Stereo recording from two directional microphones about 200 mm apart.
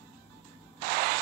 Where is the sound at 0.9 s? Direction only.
50° right (ahead or behind).